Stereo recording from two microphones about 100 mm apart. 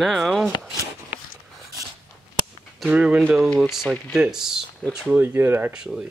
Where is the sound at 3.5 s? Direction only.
Centre (ahead or behind).